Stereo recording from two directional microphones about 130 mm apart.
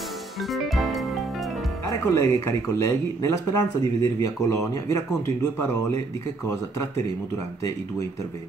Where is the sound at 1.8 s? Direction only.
30° left (ahead or behind).